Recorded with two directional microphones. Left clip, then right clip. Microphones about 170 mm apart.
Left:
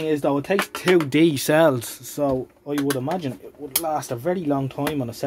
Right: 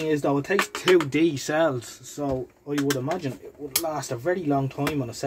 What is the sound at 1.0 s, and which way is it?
Speech, 85° left.